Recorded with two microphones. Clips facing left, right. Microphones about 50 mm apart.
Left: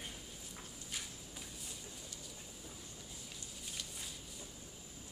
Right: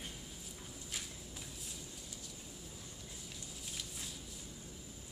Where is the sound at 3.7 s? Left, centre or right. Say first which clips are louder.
Even; centre.